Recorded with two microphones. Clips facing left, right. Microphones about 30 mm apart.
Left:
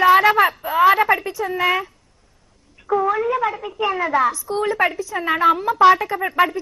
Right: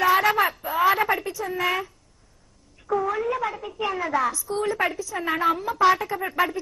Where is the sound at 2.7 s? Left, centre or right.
Left.